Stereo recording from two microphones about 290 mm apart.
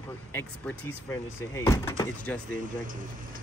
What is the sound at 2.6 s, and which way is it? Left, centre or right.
Speech, right.